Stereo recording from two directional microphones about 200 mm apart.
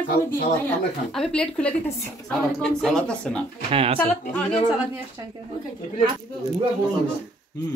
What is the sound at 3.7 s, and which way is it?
Speech, 30° right (ahead or behind).